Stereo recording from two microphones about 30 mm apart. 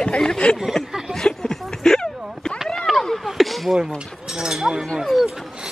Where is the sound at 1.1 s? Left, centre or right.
Centre.